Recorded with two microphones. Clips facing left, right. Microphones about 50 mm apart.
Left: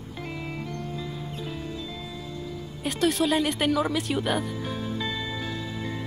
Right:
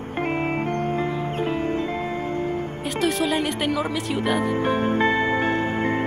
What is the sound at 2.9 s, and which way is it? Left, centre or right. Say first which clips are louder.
Speech: right 1 dB; centre.